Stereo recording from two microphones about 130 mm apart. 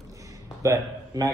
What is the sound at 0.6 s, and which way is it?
Speech, 25° right (ahead or behind).